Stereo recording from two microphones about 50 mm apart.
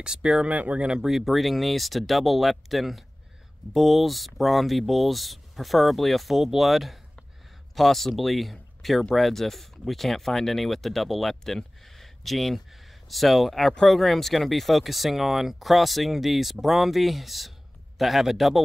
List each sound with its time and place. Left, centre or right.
0.0 s speech: centre
0.5 s speech: right
1.0 s speech: centre